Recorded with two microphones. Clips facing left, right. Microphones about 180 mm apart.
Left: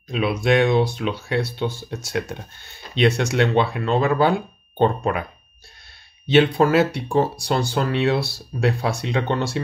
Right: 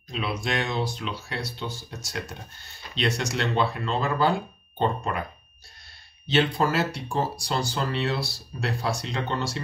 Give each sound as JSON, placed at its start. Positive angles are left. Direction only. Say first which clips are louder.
{"t": 0.1, "sound": "speech", "louder": "left 10 dB", "side_deg": 55}
{"t": 6.2, "sound": "speech", "louder": "left 7 dB", "side_deg": 60}